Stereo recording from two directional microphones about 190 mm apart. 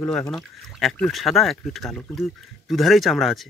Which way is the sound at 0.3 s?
Centre (ahead or behind).